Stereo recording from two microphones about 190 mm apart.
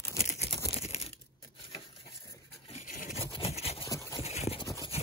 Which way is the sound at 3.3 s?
30° left (ahead or behind).